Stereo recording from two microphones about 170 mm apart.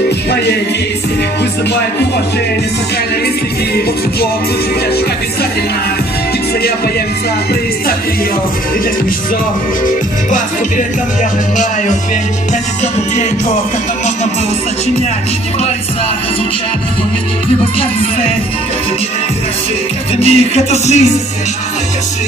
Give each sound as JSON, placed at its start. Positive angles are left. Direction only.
{"t": 20.2, "sound": "music", "side_deg": 40}